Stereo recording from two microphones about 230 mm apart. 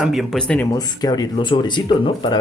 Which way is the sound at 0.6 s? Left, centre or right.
Centre.